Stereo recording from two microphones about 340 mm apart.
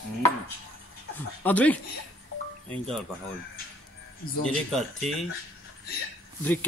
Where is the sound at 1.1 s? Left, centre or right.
Centre.